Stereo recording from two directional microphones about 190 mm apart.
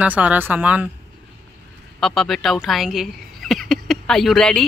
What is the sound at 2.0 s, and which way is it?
Speech, centre (ahead or behind).